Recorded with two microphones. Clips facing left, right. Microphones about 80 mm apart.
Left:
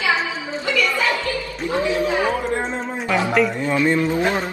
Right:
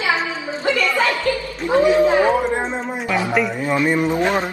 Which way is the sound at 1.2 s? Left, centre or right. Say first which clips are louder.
Right 4 dB; right.